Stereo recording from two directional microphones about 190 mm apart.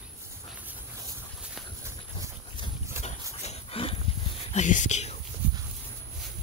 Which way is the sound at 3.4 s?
35° left (ahead or behind).